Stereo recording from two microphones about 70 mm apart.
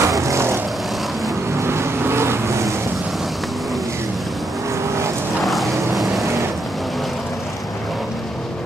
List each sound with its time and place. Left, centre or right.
0.0 s vehicle: right
1.6 s vehicle: right
5.4 s vehicle: centre